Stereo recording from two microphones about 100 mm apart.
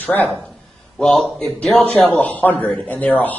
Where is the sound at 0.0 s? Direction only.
15° left (ahead or behind).